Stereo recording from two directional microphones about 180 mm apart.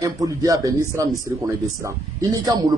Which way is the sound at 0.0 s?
20° right (ahead or behind).